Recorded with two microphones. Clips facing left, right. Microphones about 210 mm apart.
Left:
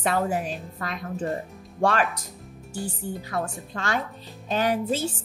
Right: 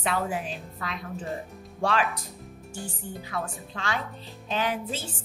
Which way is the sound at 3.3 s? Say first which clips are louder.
Left 2 dB; 45° left (ahead or behind).